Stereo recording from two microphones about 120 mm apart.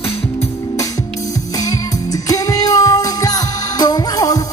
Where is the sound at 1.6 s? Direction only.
30° left (ahead or behind).